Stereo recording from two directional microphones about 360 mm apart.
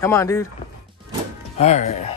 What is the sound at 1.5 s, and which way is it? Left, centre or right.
Speech, centre.